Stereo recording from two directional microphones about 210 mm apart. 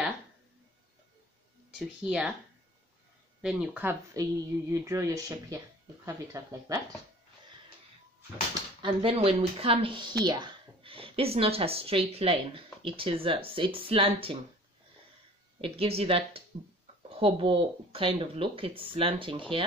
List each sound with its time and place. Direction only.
1.8 s speech: 5° right (ahead or behind)
3.4 s speech: 10° right (ahead or behind)
8.8 s speech: 25° right (ahead or behind)
15.6 s speech: 25° right (ahead or behind)